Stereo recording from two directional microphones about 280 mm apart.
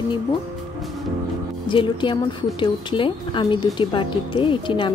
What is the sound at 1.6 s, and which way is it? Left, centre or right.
A woman's voice, centre.